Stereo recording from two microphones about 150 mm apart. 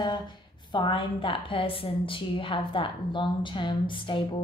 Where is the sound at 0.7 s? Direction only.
30° left (ahead or behind).